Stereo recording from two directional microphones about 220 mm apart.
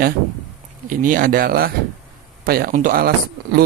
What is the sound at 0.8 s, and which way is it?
Speech, 40° right (ahead or behind).